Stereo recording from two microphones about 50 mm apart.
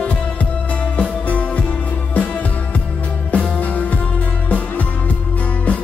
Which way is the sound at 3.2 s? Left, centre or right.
Left.